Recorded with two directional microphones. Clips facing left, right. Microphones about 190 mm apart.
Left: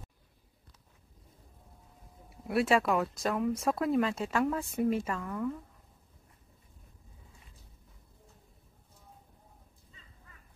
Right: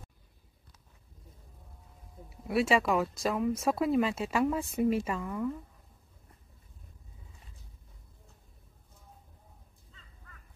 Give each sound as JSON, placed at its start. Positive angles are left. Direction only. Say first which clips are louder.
{"t": 2.2, "sound": "speech", "louder": "even", "side_deg": 0}